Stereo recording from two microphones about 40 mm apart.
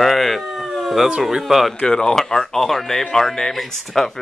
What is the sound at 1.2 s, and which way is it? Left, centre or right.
Speech, centre.